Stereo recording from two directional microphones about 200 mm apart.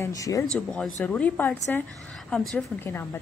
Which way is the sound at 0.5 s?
5° left (ahead or behind).